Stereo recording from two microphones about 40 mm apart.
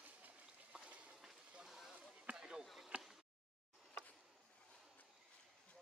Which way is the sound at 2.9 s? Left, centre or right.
Right.